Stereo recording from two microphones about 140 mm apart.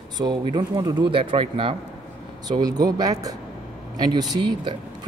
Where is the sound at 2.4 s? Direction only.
30° right (ahead or behind).